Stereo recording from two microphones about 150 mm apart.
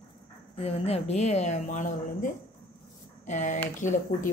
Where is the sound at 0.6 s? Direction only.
40° left (ahead or behind).